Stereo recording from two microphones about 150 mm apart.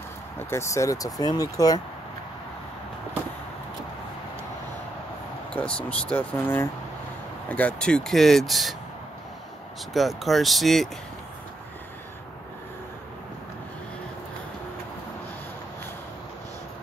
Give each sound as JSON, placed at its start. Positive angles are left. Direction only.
{"t": 0.4, "sound": "speech", "side_deg": 15}
{"t": 5.5, "sound": "speech", "side_deg": 10}
{"t": 9.9, "sound": "speech", "side_deg": 0}